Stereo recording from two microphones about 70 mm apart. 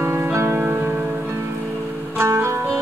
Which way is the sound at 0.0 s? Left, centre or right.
Right.